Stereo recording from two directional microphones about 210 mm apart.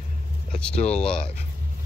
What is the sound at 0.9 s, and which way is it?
Speech, 5° left (ahead or behind).